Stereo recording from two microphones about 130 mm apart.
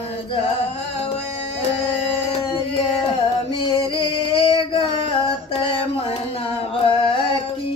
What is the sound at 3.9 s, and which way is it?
Female singing, 45° left (ahead or behind).